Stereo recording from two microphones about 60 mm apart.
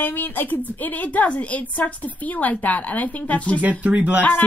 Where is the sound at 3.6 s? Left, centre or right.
Right.